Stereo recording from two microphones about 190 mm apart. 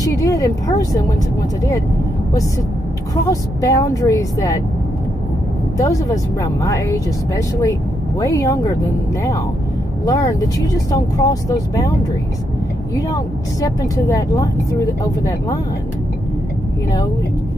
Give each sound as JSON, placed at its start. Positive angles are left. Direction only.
{"t": 0.0, "sound": "a woman's voice", "side_deg": 20}
{"t": 3.3, "sound": "a woman's voice", "side_deg": 20}
{"t": 5.8, "sound": "a woman's voice", "side_deg": 15}
{"t": 10.0, "sound": "a woman's voice", "side_deg": 15}
{"t": 12.9, "sound": "a woman's voice", "side_deg": 15}